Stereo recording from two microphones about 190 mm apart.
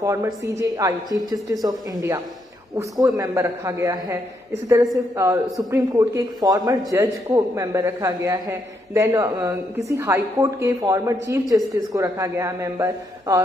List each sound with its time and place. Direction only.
0.0 s a man's voice: 15° right (ahead or behind)